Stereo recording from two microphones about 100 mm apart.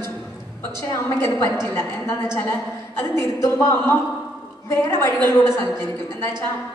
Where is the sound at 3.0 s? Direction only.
30° left (ahead or behind).